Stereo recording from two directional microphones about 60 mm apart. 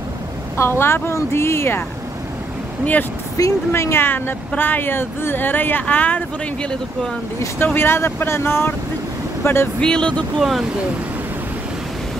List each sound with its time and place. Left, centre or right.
0.6 s speech: left
2.8 s speech: left
3.4 s speech: left
3.7 s speech: left
7.5 s speech: left
9.8 s speech: centre